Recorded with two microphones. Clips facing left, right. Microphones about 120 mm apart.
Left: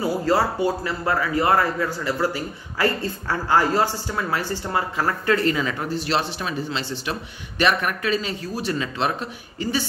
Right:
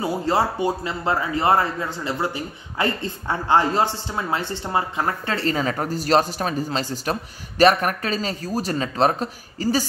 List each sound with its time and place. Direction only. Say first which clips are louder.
0.0 s speech: left 1 dB; 25° right (ahead or behind); by 9.8 s 40° right (ahead or behind)